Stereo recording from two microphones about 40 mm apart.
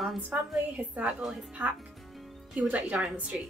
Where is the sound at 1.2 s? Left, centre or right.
Centre.